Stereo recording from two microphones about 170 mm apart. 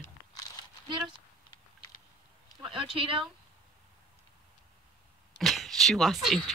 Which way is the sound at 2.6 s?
30° right (ahead or behind).